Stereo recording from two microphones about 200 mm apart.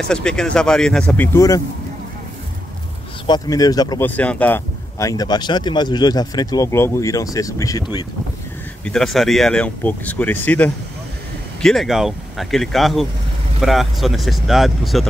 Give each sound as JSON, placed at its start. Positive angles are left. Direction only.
{"t": 0.1, "sound": "speech", "side_deg": 5}
{"t": 3.3, "sound": "speech", "side_deg": 20}
{"t": 4.1, "sound": "speech", "side_deg": 5}
{"t": 8.8, "sound": "speech", "side_deg": 0}